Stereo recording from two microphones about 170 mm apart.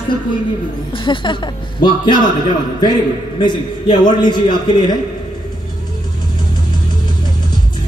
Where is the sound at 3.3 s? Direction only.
25° left (ahead or behind).